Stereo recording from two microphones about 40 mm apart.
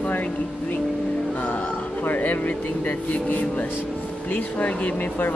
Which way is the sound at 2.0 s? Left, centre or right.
Left.